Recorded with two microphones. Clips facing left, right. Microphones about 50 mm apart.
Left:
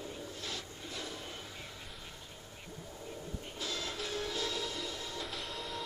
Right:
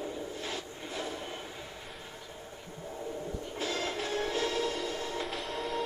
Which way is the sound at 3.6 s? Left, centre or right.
Right.